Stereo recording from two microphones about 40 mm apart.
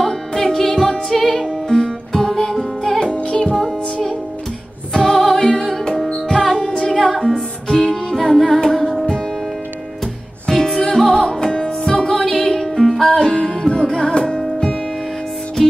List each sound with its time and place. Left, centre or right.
0.0 s music: centre
1.7 s music: centre
3.3 s music: left
3.5 s music: centre
6.6 s a capella: centre
7.0 s music: centre
10.4 s music: centre
13.2 s music: centre